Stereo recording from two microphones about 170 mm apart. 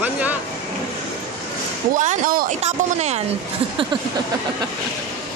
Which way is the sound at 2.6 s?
40° right (ahead or behind).